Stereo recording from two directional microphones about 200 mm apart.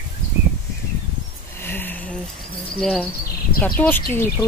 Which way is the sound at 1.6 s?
10° left (ahead or behind).